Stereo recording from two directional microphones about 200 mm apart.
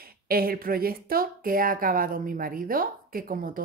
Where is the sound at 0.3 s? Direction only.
50° right (ahead or behind).